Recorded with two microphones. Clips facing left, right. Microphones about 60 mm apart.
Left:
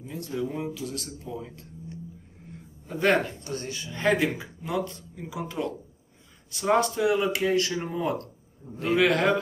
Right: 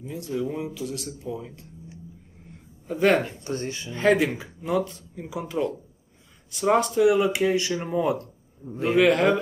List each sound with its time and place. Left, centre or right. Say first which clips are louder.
0.1 s speech: right 2 dB; centre
3.4 s speech: right 4 dB; right
3.9 s speech: right 3 dB; centre